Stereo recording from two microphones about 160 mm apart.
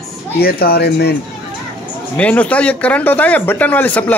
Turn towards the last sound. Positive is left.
turn(degrees=10)  # may be behind; listen again after turning